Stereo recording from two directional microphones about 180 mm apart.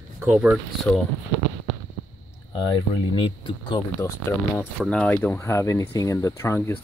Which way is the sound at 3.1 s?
30° left (ahead or behind).